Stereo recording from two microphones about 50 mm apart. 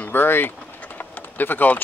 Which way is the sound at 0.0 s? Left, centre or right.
Left.